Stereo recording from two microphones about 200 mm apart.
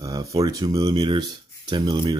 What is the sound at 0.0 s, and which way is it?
Speech, 15° right (ahead or behind).